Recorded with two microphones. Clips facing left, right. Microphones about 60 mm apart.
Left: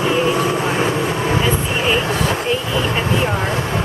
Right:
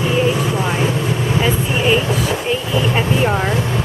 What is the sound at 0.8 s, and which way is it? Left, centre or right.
Vehicle, left.